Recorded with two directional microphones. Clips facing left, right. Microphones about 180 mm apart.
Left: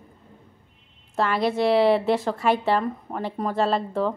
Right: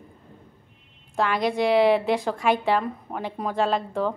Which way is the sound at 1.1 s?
Centre (ahead or behind).